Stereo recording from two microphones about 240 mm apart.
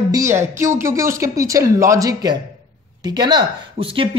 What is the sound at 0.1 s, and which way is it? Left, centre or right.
Speech, centre.